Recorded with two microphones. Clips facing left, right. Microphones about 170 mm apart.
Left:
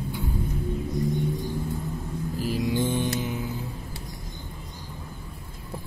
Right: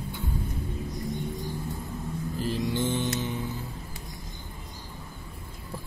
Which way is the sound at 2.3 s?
10° left (ahead or behind).